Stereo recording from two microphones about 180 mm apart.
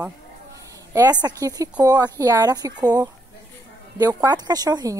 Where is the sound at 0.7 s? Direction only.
20° right (ahead or behind).